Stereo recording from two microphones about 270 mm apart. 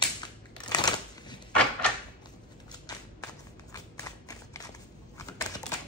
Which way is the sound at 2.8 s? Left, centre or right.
Centre.